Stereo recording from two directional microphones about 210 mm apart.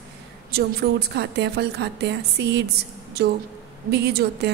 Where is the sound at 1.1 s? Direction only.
55° right (ahead or behind).